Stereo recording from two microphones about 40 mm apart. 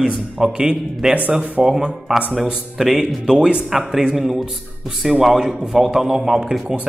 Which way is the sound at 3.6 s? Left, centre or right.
Centre.